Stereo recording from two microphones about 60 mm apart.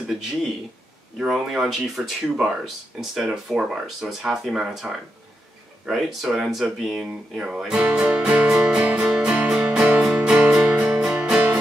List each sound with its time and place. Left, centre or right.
1.1 s speech: centre
7.3 s music: centre